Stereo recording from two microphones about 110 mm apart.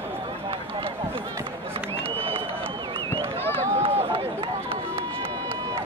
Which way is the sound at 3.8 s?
60° right (ahead or behind).